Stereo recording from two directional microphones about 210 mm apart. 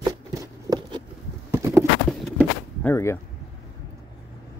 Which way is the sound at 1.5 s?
15° right (ahead or behind).